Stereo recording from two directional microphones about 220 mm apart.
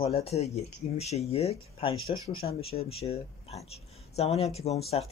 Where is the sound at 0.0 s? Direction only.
25° left (ahead or behind).